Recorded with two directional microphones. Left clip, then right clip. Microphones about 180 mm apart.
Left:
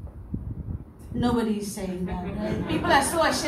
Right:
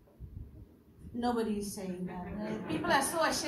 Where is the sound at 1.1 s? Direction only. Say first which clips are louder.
Left 7 dB; 35° right (ahead or behind).